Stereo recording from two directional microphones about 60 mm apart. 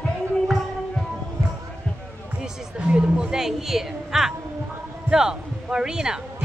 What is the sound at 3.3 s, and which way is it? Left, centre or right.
A woman's voice, centre.